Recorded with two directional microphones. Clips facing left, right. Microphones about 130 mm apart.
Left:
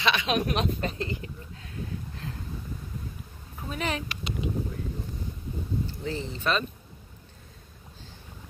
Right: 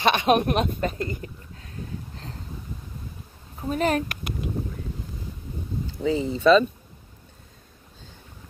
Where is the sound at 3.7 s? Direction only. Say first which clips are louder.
Right 8 dB; 45° right (ahead or behind).